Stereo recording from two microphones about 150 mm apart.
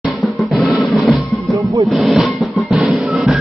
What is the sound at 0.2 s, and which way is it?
Music, centre (ahead or behind).